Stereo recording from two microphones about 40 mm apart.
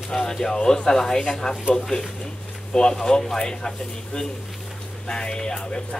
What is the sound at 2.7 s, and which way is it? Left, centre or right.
Speech, centre.